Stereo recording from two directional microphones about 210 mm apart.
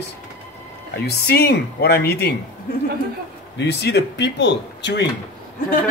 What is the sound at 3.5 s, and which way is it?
Speech, 55° left (ahead or behind).